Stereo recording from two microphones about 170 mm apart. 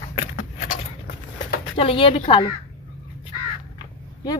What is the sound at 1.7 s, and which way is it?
Speech, 30° left (ahead or behind).